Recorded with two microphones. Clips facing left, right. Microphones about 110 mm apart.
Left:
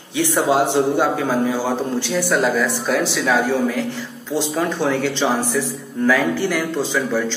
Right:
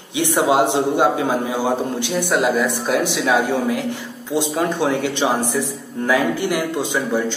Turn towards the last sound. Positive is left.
turn(degrees=-20)  # may be behind; listen again after turning